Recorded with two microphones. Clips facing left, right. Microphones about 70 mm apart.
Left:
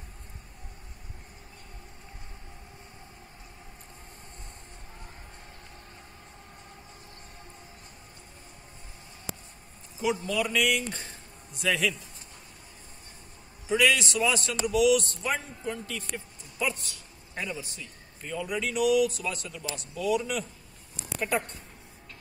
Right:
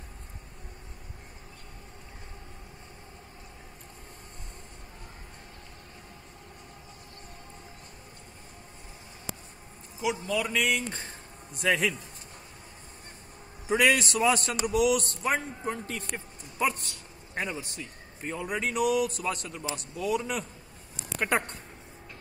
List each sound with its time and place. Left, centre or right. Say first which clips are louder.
10.0 s a man's voice: left 1 dB; centre; by 11.9 s right
13.7 s a man's voice: right 1 dB; right
21.2 s speech: right 2 dB; right